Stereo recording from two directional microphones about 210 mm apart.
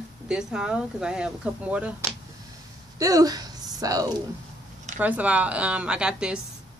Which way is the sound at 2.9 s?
15° right (ahead or behind).